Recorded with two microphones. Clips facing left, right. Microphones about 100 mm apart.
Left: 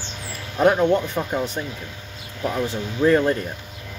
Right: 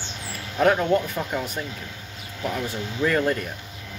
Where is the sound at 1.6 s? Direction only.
25° left (ahead or behind).